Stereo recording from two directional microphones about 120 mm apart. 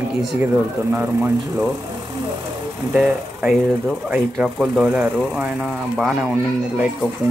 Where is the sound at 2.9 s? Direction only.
5° right (ahead or behind).